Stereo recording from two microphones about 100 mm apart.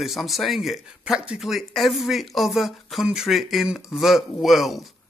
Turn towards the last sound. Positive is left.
turn(degrees=0)  # may be behind; listen again after turning